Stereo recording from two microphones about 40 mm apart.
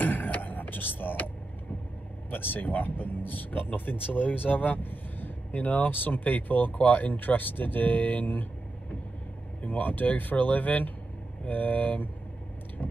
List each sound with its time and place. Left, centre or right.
0.0 s a sound: left
2.3 s speech: left
9.7 s speech: left